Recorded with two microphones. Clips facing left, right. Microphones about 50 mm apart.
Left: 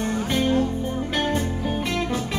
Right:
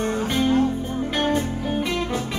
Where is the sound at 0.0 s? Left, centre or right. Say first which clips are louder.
Right 2 dB; right.